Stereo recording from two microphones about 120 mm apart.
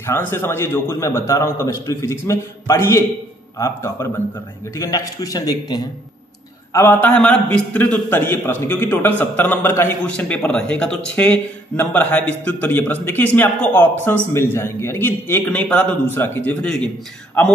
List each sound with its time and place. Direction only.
0.0 s a man's voice: 20° left (ahead or behind)
6.7 s a man's voice: 20° left (ahead or behind)